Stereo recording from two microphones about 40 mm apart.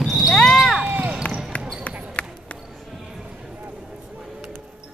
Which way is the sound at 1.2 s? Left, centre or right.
Left.